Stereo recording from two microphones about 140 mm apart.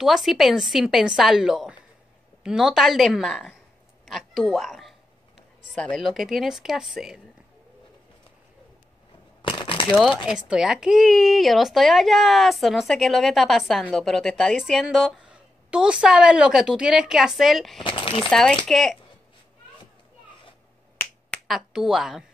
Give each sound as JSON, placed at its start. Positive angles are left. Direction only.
{"t": 0.0, "sound": "a woman's voice", "side_deg": 0}
{"t": 4.0, "sound": "a sound", "side_deg": 0}
{"t": 5.7, "sound": "a woman's voice", "side_deg": 0}
{"t": 9.4, "sound": "a sound", "side_deg": 35}
{"t": 9.8, "sound": "a woman's voice", "side_deg": 0}
{"t": 17.8, "sound": "speech", "side_deg": 40}
{"t": 18.3, "sound": "a woman's voice", "side_deg": 5}
{"t": 21.5, "sound": "a woman's voice", "side_deg": 0}